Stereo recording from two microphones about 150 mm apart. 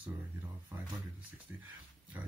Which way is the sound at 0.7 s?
20° right (ahead or behind).